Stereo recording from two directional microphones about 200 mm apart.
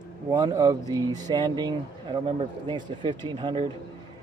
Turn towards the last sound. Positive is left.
turn(degrees=-25)  # may be behind; listen again after turning